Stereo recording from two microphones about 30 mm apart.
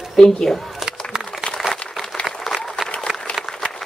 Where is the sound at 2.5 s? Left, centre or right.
Centre.